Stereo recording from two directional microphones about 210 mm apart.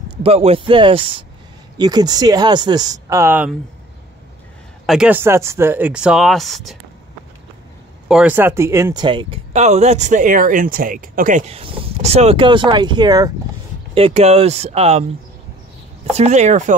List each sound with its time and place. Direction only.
0.2 s speech: 30° right (ahead or behind); by 3.5 s 10° right (ahead or behind)
4.8 s speech: 5° right (ahead or behind)
8.1 s speech: 5° right (ahead or behind); by 15.0 s 30° right (ahead or behind)
16.2 s speech: 35° right (ahead or behind)